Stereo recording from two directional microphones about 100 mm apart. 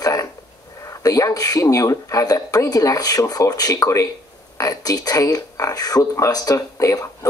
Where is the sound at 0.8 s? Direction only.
35° left (ahead or behind).